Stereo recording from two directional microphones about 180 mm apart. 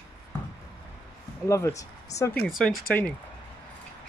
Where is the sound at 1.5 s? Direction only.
15° left (ahead or behind).